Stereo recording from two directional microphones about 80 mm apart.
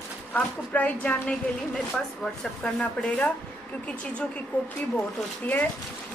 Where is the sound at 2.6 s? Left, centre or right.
Centre.